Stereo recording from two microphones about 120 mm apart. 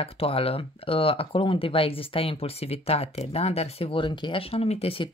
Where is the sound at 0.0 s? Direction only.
50° left (ahead or behind).